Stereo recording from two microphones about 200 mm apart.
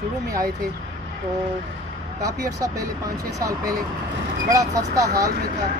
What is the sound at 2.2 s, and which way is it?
Speech, 15° right (ahead or behind).